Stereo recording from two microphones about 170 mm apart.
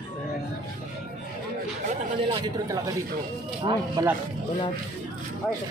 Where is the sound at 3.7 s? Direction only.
25° right (ahead or behind).